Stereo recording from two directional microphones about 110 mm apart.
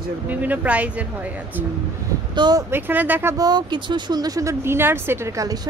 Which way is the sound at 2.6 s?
20° right (ahead or behind).